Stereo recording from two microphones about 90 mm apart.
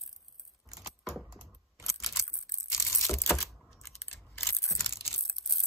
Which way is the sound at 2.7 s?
30° left (ahead or behind).